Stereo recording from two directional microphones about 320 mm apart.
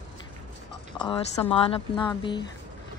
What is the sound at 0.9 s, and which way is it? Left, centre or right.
A woman's voice, centre.